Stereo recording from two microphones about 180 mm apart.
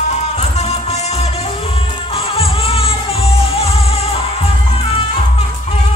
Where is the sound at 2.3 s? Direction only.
30° left (ahead or behind).